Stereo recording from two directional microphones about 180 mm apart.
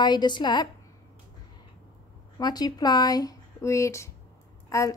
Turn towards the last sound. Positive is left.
turn(degrees=15)  # may be behind; listen again after turning